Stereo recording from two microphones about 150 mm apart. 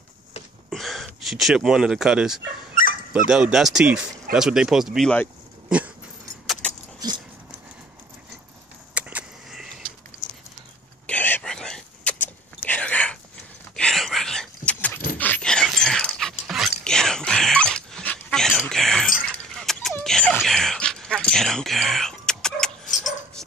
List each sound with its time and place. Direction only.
0.7 s speech: centre (ahead or behind)
2.8 s dog: 65° left (ahead or behind)
3.1 s speech: 5° right (ahead or behind)
6.4 s keys jangling: centre (ahead or behind)
8.9 s a sound: 10° right (ahead or behind)
11.1 s a sound: 10° left (ahead or behind)
13.7 s whispering: 5° left (ahead or behind)
15.1 s dog: 10° left (ahead or behind)
18.7 s a sound: 5° left (ahead or behind)
19.2 s keys jangling: 5° left (ahead or behind)
20.0 s a sound: 5° left (ahead or behind)
22.9 s dog: 60° left (ahead or behind)